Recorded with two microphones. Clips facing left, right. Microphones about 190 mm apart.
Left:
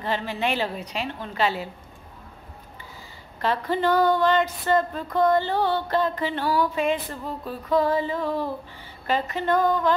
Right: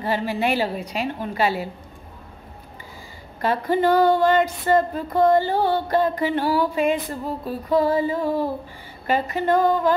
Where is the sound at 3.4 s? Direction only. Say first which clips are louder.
Right 4 dB; 10° right (ahead or behind).